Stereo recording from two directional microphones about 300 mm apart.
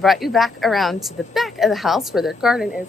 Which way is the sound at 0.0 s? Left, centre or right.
Centre.